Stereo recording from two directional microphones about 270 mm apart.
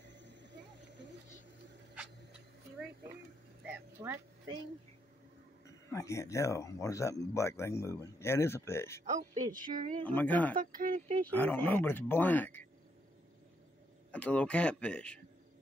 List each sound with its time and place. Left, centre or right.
0.0 s a sound: right
3.6 s a sound: centre
5.7 s speech: centre
9.1 s speech: right
10.0 s speech: centre
10.5 s speech: right
11.2 s speech: centre
14.1 s speech: centre